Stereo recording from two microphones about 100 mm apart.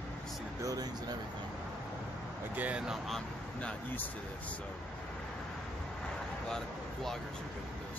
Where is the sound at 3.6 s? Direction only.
20° left (ahead or behind).